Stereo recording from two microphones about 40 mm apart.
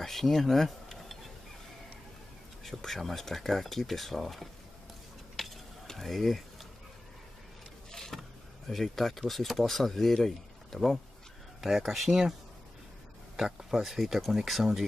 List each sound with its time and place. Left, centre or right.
0.0 s a sound: centre
2.6 s speech: centre
5.4 s stir: centre
5.9 s a sound: centre
7.9 s power windows: centre
9.6 s speech: centre
11.6 s speech: centre
13.6 s speech: centre